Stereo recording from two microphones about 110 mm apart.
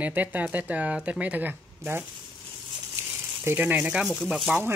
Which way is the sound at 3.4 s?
15° right (ahead or behind).